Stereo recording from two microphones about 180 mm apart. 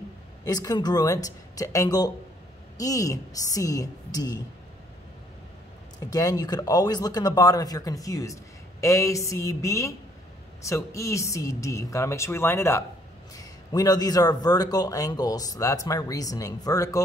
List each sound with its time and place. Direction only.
0.5 s a man's voice: 20° left (ahead or behind)
5.9 s a man's voice: 20° left (ahead or behind)